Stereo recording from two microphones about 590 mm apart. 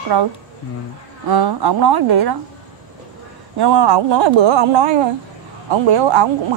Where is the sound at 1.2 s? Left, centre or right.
Right.